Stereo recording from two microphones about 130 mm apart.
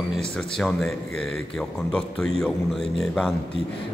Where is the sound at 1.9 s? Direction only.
5° left (ahead or behind).